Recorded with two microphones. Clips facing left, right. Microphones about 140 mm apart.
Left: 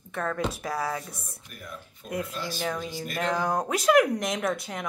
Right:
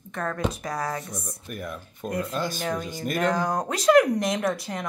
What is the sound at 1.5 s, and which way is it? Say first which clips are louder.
Speech: right 7 dB; 55° right (ahead or behind).